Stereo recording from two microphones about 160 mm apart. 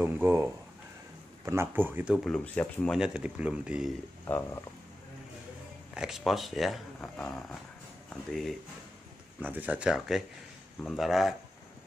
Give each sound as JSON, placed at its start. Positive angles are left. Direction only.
{"t": 0.0, "sound": "speech", "side_deg": -15}
{"t": 2.1, "sound": "speech", "side_deg": 0}
{"t": 4.3, "sound": "speech", "side_deg": 20}
{"t": 5.9, "sound": "speech", "side_deg": 0}
{"t": 9.4, "sound": "speech", "side_deg": -10}